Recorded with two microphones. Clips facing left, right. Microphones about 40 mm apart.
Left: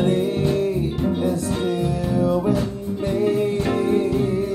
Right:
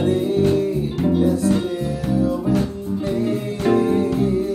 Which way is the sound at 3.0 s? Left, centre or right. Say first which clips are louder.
Left 3 dB; left.